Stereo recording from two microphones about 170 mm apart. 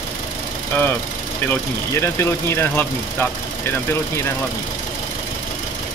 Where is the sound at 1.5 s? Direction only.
15° left (ahead or behind).